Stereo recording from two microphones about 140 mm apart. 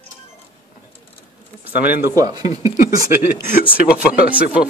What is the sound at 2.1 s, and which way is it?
Speech, 25° right (ahead or behind).